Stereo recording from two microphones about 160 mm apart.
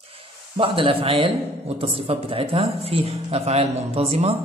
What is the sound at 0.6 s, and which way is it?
Speech, 35° right (ahead or behind).